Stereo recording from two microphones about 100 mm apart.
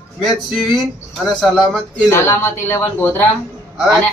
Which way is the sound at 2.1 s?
25° left (ahead or behind).